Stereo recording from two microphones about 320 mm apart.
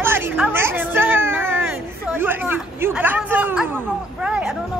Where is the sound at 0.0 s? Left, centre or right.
Centre.